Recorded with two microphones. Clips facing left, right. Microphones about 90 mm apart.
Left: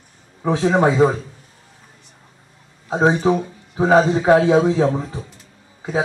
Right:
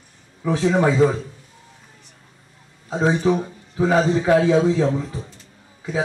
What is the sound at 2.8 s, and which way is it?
A man's voice, 40° left (ahead or behind).